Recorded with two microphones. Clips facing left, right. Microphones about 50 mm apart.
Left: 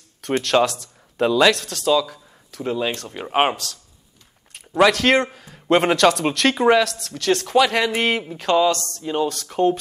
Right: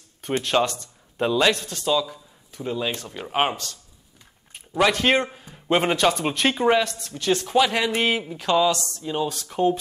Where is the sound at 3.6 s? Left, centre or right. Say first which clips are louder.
Left 3 dB; left.